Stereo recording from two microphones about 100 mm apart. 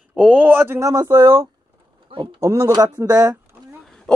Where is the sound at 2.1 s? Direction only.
65° right (ahead or behind).